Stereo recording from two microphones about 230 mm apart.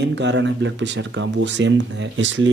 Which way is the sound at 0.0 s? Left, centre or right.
Right.